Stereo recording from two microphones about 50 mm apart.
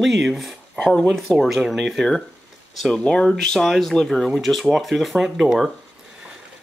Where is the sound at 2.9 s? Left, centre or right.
Left.